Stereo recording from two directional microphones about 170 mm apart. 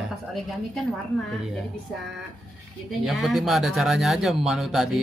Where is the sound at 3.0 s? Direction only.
Centre (ahead or behind).